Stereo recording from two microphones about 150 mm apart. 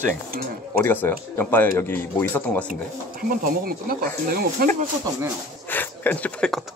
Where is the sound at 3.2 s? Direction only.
75° right (ahead or behind).